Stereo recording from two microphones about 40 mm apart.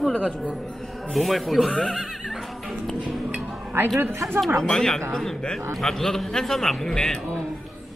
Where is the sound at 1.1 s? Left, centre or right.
Centre.